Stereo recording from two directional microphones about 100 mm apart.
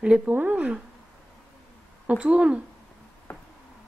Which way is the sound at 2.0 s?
10° right (ahead or behind).